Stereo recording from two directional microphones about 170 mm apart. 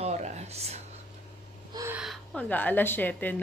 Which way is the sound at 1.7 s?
15° right (ahead or behind).